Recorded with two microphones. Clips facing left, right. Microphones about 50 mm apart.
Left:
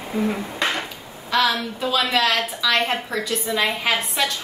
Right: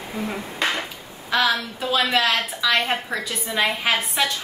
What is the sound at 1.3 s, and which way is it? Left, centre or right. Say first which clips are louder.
A woman's voice: left 1 dB; centre.